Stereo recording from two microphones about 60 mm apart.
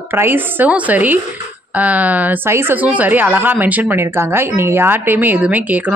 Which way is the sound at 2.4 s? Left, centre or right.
Right.